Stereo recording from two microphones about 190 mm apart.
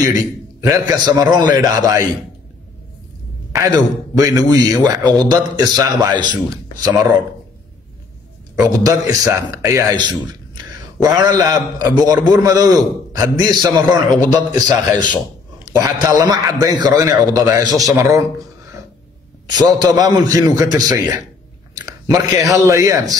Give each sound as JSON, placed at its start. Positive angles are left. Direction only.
{"t": 0.6, "sound": "a man's voice", "side_deg": -15}
{"t": 3.5, "sound": "a man's voice", "side_deg": -20}
{"t": 8.5, "sound": "a man's voice", "side_deg": -20}
{"t": 19.5, "sound": "a man's voice", "side_deg": -20}